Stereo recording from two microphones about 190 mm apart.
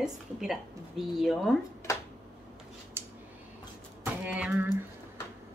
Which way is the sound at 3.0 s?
10° right (ahead or behind).